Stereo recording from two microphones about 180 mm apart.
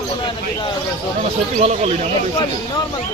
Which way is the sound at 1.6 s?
40° right (ahead or behind).